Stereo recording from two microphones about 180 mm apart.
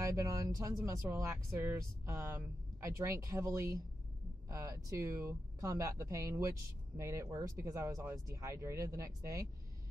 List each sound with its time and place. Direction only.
0.0 s speech: 20° right (ahead or behind)